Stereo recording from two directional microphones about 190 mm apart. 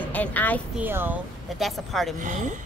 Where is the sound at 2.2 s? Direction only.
40° right (ahead or behind).